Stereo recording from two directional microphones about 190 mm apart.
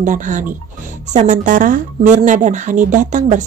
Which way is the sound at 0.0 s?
40° right (ahead or behind).